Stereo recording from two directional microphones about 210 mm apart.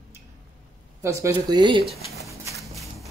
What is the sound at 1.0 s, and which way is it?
Speech, 15° right (ahead or behind).